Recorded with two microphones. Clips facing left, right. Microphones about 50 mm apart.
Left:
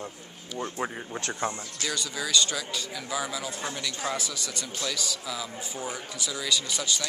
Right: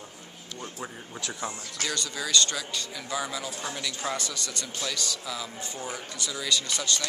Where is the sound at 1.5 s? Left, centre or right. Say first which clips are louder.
Left 6 dB; left.